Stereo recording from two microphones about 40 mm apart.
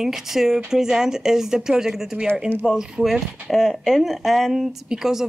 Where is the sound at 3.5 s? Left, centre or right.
Centre.